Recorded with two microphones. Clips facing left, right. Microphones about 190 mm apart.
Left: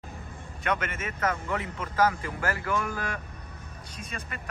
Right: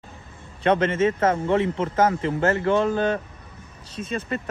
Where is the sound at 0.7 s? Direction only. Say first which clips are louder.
Right 12 dB; 30° right (ahead or behind).